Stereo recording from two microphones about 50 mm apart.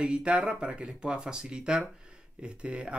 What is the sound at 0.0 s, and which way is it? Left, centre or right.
Speech, right.